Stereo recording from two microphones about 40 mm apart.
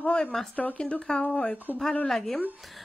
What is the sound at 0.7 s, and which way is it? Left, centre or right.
Speech, left.